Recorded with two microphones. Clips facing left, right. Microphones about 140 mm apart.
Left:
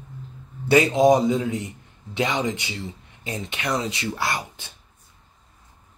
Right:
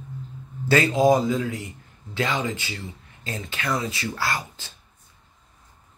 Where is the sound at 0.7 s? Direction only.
20° left (ahead or behind).